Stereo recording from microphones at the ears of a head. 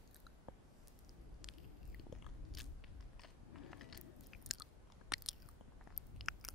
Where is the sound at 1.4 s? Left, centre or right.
Left.